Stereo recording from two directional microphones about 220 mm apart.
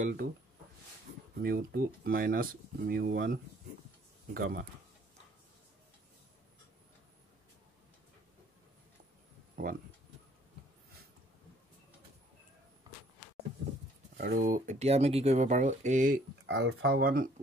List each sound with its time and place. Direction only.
0.0 s speech: 45° right (ahead or behind)
1.4 s speech: 45° right (ahead or behind)
14.1 s speech: 35° right (ahead or behind)
16.4 s speech: 55° right (ahead or behind)